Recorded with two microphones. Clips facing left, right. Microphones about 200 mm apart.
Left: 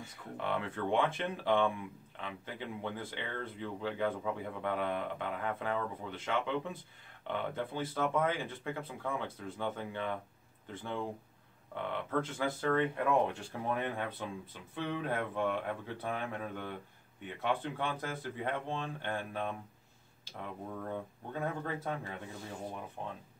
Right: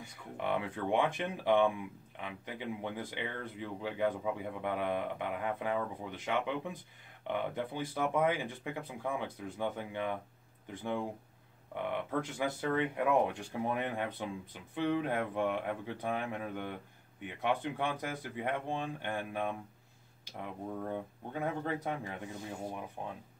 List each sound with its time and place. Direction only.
0.4 s speech: 15° right (ahead or behind)